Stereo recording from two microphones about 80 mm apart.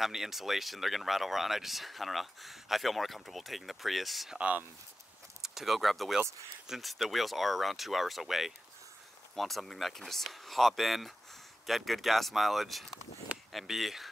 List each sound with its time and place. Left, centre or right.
0.0 s speech: centre
4.4 s speech: centre
5.4 s speech: centre